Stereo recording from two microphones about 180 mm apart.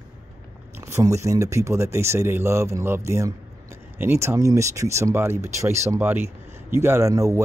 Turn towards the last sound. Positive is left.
turn(degrees=-20)  # may be behind; listen again after turning